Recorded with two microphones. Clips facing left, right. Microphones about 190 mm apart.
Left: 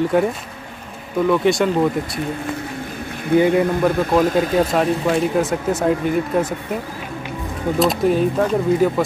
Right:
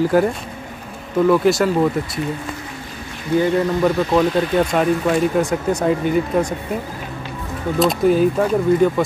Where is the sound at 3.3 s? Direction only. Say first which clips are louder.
Left 3 dB; 55° left (ahead or behind).